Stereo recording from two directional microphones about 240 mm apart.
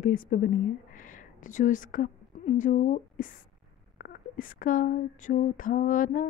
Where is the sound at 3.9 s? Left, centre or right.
Left.